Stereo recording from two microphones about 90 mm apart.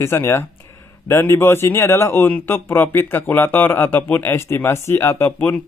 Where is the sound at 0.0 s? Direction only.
30° left (ahead or behind).